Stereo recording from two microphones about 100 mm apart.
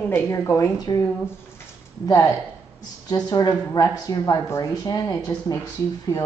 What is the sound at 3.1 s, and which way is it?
Speech, 40° left (ahead or behind).